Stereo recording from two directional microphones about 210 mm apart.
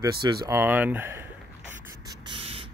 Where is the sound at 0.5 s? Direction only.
10° right (ahead or behind).